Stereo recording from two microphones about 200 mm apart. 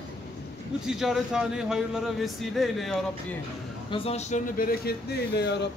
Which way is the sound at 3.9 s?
30° left (ahead or behind).